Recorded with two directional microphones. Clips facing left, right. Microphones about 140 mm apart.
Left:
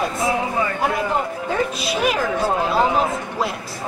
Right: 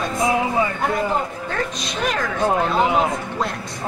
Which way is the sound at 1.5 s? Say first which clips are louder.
Left 4 dB; 5° left (ahead or behind).